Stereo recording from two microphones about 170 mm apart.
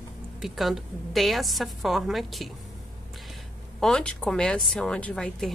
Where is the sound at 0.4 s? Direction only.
Centre (ahead or behind).